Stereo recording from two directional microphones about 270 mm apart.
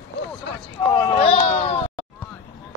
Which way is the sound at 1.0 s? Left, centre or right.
Centre.